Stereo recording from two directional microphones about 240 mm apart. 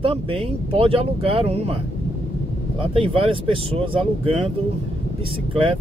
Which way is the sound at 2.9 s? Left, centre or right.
Right.